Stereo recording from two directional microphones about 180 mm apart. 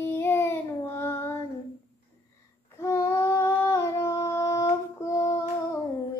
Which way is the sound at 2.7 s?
15° left (ahead or behind).